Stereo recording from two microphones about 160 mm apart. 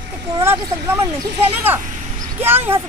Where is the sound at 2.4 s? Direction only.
15° right (ahead or behind).